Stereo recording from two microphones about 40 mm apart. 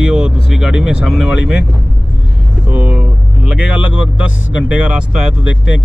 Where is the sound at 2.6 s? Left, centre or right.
Right.